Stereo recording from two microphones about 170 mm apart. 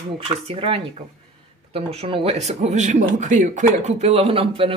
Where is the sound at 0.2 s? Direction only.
35° right (ahead or behind).